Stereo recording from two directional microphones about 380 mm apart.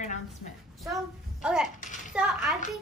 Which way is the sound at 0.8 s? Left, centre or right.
Centre.